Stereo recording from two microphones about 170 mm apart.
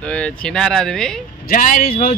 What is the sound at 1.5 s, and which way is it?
Speech, 55° left (ahead or behind).